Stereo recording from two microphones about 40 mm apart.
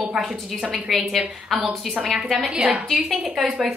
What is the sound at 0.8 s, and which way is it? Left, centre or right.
A woman's voice, centre.